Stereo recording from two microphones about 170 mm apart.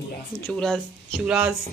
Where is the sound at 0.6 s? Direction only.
5° left (ahead or behind).